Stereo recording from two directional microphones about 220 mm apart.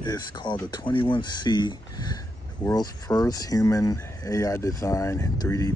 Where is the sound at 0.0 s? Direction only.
20° left (ahead or behind).